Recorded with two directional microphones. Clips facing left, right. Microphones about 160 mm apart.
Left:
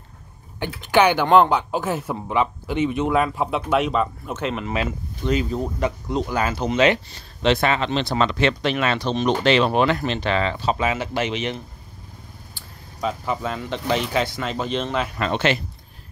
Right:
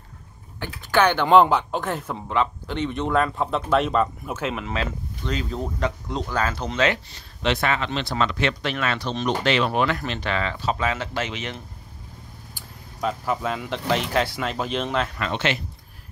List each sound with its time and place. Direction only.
0.6 s speech: 15° left (ahead or behind)
1.2 s a man's voice: centre (ahead or behind)
4.7 s speech: 10° left (ahead or behind)
7.2 s speech: 30° left (ahead or behind)
13.0 s a man's voice: centre (ahead or behind)
15.1 s speech: 40° left (ahead or behind)